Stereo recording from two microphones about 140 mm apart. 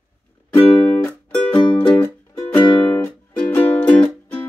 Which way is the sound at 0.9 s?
10° left (ahead or behind).